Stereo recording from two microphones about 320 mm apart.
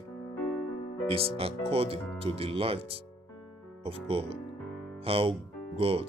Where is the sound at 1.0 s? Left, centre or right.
Centre.